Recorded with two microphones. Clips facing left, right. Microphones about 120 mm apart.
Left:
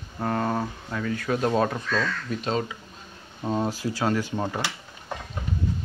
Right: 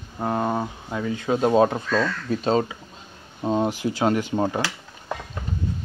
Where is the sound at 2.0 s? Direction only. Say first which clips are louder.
Right 4 dB; 35° right (ahead or behind).